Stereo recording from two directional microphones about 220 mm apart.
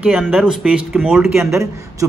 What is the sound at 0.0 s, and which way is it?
Speech, centre (ahead or behind).